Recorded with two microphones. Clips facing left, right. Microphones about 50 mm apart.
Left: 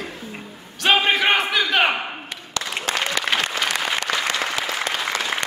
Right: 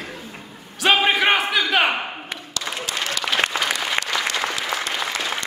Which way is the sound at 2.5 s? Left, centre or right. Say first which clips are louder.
Left 3 dB; left.